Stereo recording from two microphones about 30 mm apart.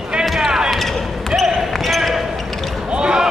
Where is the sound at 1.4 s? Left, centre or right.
Centre.